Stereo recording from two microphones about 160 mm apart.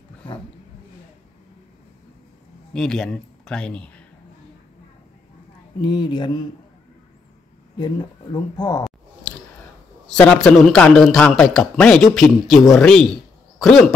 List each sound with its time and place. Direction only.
2.7 s speech: 5° left (ahead or behind)
5.8 s speech: 30° left (ahead or behind)
7.8 s speech: 25° left (ahead or behind)
10.0 s a man's voice: 5° left (ahead or behind)